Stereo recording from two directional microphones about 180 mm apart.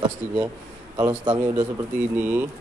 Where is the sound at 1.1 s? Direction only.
20° right (ahead or behind).